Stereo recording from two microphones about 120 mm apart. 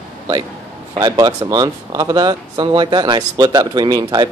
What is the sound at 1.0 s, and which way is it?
Speech, 35° right (ahead or behind).